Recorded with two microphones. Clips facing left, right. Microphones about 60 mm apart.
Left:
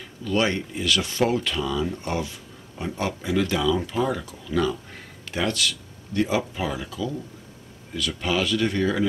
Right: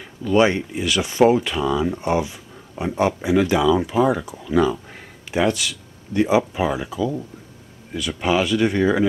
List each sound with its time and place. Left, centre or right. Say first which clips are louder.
0.0 s speech: right 7 dB; centre
8.2 s speech: right 5 dB; right